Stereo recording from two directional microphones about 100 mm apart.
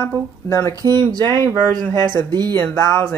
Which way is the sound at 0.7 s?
40° right (ahead or behind).